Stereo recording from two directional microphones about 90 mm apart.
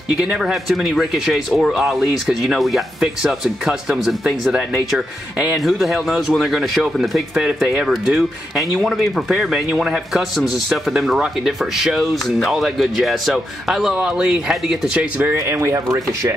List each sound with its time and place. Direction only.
0.2 s speech: 10° right (ahead or behind)
15.3 s speech: 30° right (ahead or behind)